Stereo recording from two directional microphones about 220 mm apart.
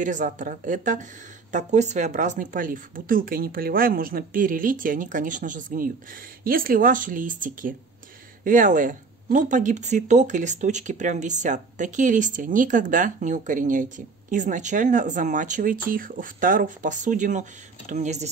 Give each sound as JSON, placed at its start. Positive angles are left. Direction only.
{"t": 0.0, "sound": "speech", "side_deg": -35}